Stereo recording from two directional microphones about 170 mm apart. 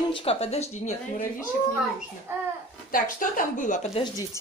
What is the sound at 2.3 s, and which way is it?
Speech, 15° right (ahead or behind).